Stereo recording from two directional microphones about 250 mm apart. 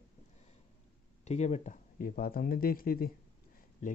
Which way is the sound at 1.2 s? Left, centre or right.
Left.